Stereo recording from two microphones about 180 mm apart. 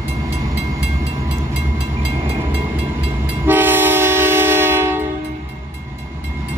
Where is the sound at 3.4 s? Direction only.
10° right (ahead or behind).